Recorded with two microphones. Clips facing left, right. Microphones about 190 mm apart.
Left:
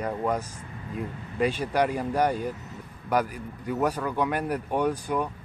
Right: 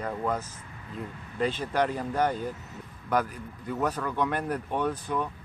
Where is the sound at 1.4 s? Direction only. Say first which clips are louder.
Left 2 dB; 10° left (ahead or behind).